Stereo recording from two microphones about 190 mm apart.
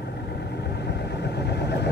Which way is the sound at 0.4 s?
60° left (ahead or behind).